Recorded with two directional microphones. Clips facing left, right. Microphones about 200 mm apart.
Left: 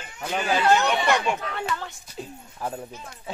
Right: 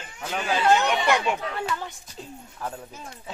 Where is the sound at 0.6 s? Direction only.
10° right (ahead or behind).